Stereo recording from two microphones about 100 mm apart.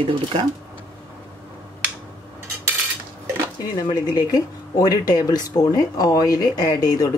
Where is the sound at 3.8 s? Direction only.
40° left (ahead or behind).